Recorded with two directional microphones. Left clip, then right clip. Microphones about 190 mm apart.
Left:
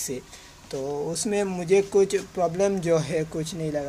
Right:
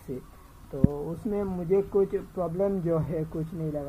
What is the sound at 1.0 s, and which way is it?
Speech, 35° left (ahead or behind).